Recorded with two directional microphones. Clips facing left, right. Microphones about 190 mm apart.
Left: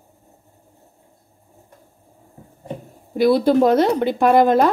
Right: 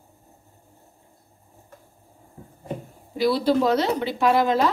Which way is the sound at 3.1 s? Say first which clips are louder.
Left 6 dB; 50° left (ahead or behind).